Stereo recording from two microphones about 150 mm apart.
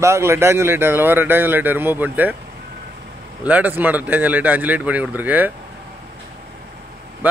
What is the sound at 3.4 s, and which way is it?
A man's voice, 10° right (ahead or behind).